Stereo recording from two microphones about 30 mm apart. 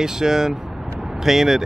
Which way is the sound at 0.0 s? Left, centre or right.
Centre.